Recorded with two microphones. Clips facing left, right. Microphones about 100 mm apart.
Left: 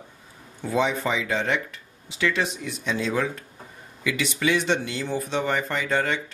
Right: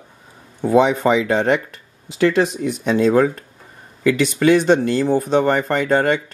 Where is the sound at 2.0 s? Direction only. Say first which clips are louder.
Right 9 dB; 45° right (ahead or behind).